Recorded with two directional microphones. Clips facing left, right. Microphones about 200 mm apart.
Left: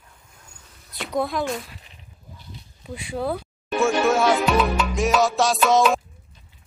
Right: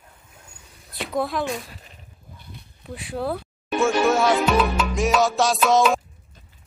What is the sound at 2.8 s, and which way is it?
Speech, centre (ahead or behind).